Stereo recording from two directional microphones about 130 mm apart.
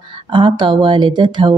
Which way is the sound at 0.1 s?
40° right (ahead or behind).